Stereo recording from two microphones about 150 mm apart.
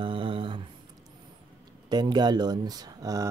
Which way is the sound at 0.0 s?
35° right (ahead or behind).